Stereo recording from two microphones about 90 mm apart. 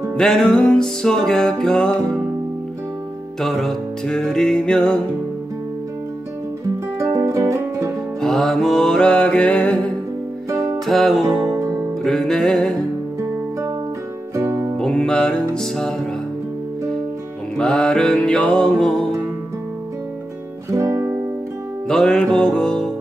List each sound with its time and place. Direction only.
0.1 s music: 5° left (ahead or behind)
3.3 s music: centre (ahead or behind)
7.0 s music: 35° right (ahead or behind)
8.2 s music: 5° left (ahead or behind)
10.5 s music: 40° right (ahead or behind)
10.9 s music: centre (ahead or behind)
14.3 s music: 25° right (ahead or behind)
14.8 s music: 10° left (ahead or behind)
17.6 s music: 10° left (ahead or behind)
20.7 s music: 35° right (ahead or behind)
21.8 s music: 5° left (ahead or behind)